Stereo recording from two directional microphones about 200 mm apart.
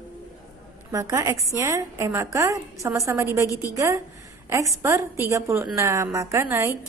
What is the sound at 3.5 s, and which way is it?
Speech, 15° left (ahead or behind).